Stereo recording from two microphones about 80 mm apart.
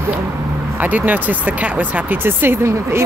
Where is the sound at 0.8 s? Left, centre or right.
Right.